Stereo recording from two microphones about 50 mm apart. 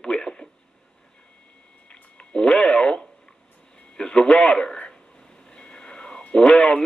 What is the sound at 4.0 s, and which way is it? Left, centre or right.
Speech, centre.